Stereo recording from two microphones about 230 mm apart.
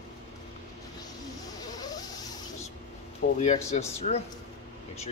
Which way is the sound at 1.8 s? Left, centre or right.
Centre.